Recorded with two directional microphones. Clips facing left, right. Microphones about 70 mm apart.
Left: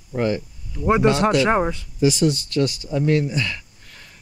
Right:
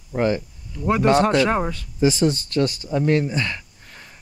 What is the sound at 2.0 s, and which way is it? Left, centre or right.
Speech, right.